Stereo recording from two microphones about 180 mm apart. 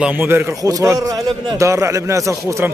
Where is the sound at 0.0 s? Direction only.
10° right (ahead or behind).